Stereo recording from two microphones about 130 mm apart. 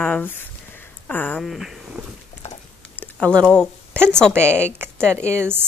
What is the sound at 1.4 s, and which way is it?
Speech, centre (ahead or behind).